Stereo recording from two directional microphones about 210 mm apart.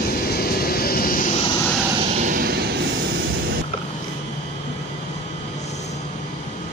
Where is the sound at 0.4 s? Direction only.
45° left (ahead or behind).